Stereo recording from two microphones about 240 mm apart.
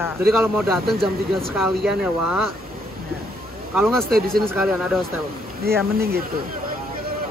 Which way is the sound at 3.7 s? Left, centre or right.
Centre.